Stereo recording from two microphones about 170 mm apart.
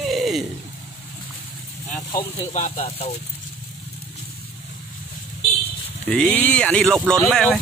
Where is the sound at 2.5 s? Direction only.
45° left (ahead or behind).